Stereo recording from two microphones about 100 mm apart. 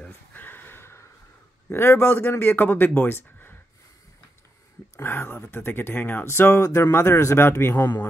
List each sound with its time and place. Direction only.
0.0 s a sound: 20° left (ahead or behind)
1.7 s speech: 25° left (ahead or behind)
4.9 s speech: 25° left (ahead or behind)